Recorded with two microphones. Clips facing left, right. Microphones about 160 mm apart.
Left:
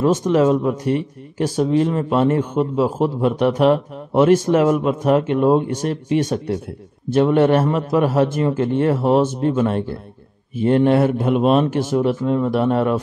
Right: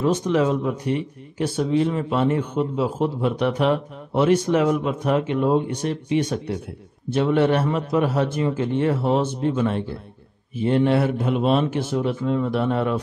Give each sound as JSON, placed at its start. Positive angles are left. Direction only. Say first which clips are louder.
{"t": 0.0, "sound": "speech", "louder": "left 4 dB", "side_deg": 45}